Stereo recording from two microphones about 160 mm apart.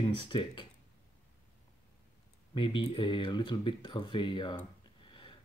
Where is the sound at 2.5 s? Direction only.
30° left (ahead or behind).